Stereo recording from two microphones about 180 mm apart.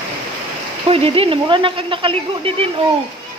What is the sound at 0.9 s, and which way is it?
Speech, 30° right (ahead or behind).